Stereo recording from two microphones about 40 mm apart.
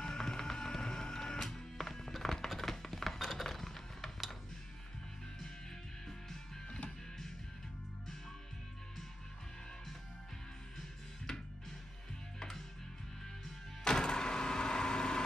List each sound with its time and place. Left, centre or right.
0.0 s printer: centre
1.4 s music: centre
12.4 s music: centre
13.8 s vehicle: centre